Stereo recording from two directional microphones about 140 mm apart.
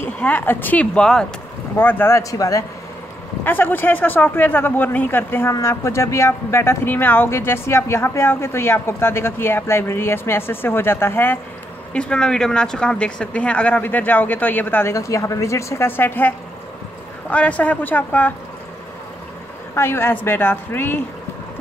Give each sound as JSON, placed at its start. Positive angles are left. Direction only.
{"t": 0.0, "sound": "a man's voice", "side_deg": 10}
{"t": 19.7, "sound": "a man's voice", "side_deg": 15}